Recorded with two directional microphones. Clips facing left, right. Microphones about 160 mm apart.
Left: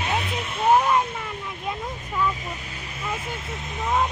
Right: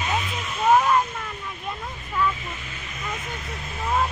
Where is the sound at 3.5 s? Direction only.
20° left (ahead or behind).